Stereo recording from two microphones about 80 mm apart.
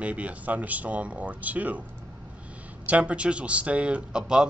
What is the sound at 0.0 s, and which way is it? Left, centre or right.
Speech, centre.